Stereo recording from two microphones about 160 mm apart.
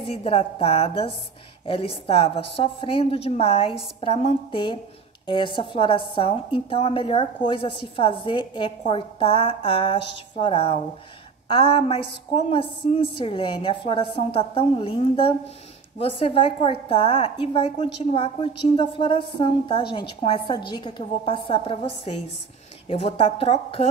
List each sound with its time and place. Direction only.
0.0 s a woman's voice: 35° left (ahead or behind)